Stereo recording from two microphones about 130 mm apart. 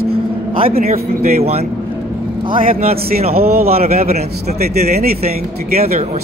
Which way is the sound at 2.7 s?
55° right (ahead or behind).